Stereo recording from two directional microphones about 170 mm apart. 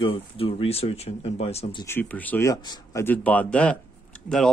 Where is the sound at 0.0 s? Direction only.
35° left (ahead or behind).